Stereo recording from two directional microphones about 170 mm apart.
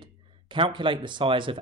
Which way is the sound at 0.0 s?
30° right (ahead or behind).